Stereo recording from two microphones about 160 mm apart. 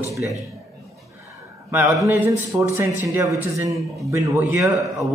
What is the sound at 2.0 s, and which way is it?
A man's voice, 10° right (ahead or behind).